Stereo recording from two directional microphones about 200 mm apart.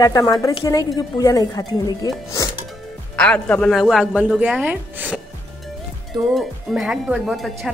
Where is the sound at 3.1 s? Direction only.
5° left (ahead or behind).